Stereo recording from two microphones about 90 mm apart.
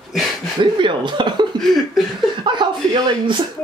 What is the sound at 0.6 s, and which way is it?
Speech, 60° right (ahead or behind).